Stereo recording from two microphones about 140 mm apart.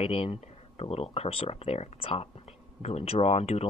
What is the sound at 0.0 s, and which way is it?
Speech, 45° left (ahead or behind).